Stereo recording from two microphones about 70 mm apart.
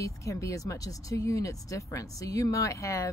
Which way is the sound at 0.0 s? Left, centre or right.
Left.